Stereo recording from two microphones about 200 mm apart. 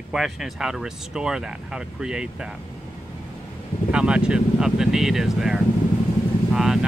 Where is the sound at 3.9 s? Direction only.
5° right (ahead or behind).